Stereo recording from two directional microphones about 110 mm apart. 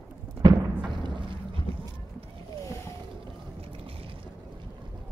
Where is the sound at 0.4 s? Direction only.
35° right (ahead or behind).